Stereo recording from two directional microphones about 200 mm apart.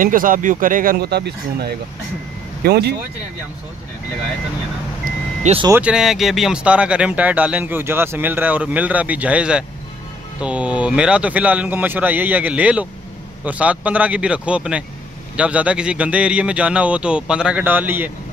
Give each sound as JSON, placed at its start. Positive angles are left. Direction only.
{"t": 0.0, "sound": "speech", "side_deg": -45}
{"t": 5.0, "sound": "vehicle", "side_deg": -35}
{"t": 5.7, "sound": "a man's voice", "side_deg": -5}